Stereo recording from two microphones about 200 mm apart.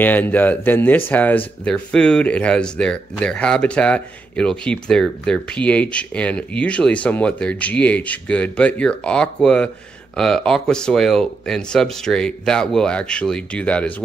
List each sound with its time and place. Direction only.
0.0 s speech: 10° left (ahead or behind)